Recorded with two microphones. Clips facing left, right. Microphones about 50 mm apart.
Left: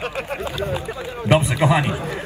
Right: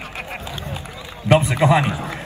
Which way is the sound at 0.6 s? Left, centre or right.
Left.